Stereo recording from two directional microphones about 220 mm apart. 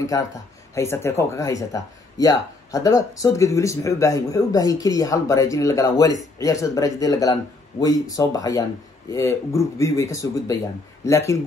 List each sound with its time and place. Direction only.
0.0 s speech: 15° left (ahead or behind)